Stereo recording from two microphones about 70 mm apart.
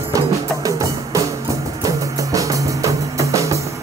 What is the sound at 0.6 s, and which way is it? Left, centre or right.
Music, right.